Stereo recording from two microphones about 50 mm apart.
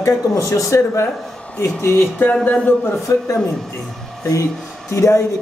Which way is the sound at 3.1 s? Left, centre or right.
Left.